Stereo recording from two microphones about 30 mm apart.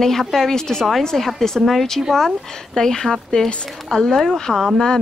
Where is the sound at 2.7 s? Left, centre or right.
Centre.